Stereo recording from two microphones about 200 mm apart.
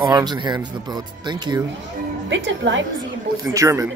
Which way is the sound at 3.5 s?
15° right (ahead or behind).